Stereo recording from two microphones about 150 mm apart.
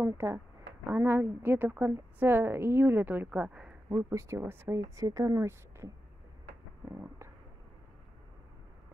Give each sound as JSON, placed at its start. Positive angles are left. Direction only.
{"t": 0.0, "sound": "a woman's voice", "side_deg": -20}
{"t": 3.9, "sound": "speech", "side_deg": -20}
{"t": 6.9, "sound": "a sound", "side_deg": -15}